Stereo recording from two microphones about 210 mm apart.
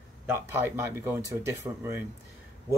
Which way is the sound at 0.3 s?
10° right (ahead or behind).